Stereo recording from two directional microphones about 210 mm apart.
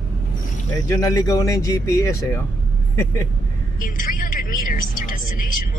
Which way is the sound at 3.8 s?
40° left (ahead or behind).